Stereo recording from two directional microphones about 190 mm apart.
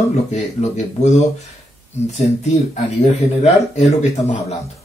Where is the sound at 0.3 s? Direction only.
35° left (ahead or behind).